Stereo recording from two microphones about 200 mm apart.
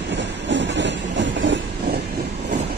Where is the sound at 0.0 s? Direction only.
60° right (ahead or behind).